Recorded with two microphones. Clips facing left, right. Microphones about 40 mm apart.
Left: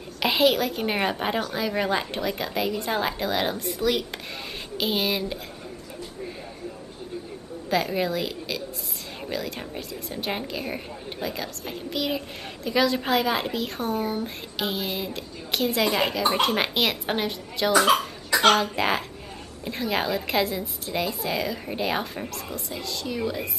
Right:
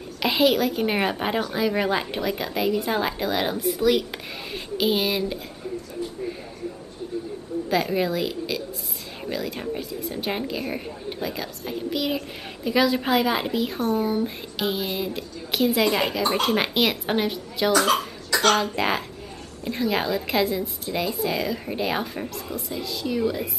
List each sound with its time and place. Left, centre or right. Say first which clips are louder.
0.2 s speech: right 1 dB; centre
7.7 s speech: right 1 dB; centre
17.7 s a child's voice: left 4 dB; centre